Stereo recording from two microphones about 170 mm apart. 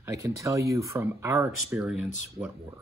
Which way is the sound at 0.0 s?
15° right (ahead or behind).